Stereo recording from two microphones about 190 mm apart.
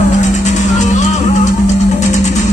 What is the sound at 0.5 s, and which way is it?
Music, 40° left (ahead or behind).